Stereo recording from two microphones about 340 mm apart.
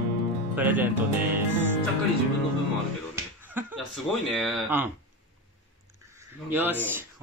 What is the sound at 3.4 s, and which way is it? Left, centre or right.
Speech, centre.